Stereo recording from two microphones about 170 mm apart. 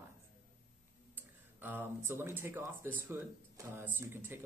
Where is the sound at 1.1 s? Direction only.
10° right (ahead or behind).